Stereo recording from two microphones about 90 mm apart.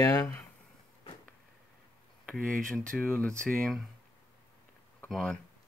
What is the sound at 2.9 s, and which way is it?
Speech, 5° left (ahead or behind).